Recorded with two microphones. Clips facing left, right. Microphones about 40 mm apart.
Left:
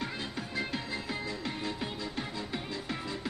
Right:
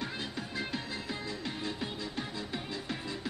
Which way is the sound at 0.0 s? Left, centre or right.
Left.